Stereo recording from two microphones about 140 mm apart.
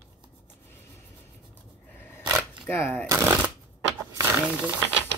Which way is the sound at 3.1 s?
15° right (ahead or behind).